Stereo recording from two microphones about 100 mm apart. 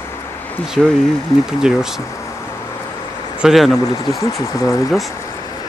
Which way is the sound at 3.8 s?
40° left (ahead or behind).